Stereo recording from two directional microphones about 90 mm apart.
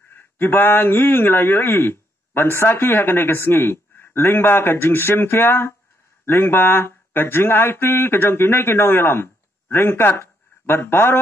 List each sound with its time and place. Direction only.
0.1 s speech: 25° left (ahead or behind)